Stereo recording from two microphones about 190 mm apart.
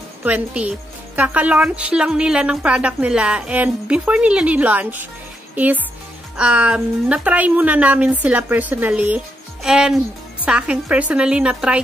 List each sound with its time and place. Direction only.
0.2 s a woman's voice: 10° right (ahead or behind)